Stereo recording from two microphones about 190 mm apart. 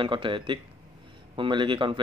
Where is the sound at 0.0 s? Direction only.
25° right (ahead or behind).